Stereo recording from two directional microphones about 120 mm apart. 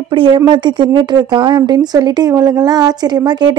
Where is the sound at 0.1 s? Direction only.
45° right (ahead or behind).